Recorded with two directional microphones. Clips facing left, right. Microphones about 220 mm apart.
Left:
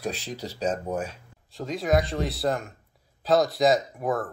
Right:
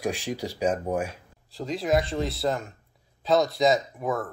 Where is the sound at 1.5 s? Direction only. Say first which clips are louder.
Even; centre (ahead or behind).